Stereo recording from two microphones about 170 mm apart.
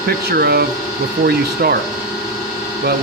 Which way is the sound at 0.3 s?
65° right (ahead or behind).